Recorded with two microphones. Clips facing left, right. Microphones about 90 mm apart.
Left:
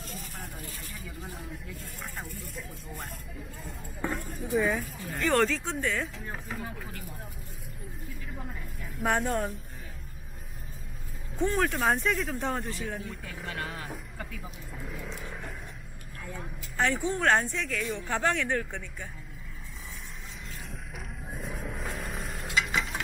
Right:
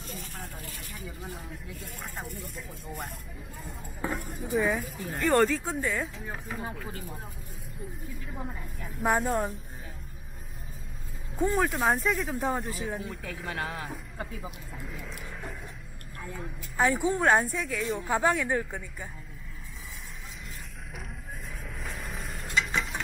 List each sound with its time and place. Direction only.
0.1 s vehicle: centre (ahead or behind)
0.9 s speech: centre (ahead or behind)
3.6 s speech: 5° right (ahead or behind)
6.9 s speech: 25° right (ahead or behind)
8.4 s speech: 15° right (ahead or behind)
9.0 s speech: centre (ahead or behind)
11.3 s speech: 10° right (ahead or behind)
14.8 s speech: centre (ahead or behind)
21.7 s a sound: centre (ahead or behind)